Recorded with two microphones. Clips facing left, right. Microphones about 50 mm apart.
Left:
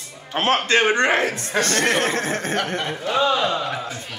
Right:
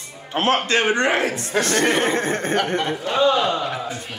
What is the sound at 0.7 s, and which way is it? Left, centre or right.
Speech, left.